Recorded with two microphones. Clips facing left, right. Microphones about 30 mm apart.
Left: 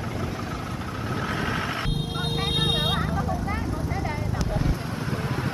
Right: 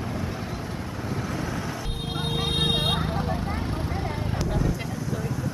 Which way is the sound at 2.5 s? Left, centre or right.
Centre.